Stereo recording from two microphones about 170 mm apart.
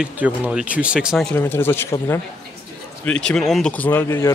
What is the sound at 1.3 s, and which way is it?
Speech, 10° left (ahead or behind).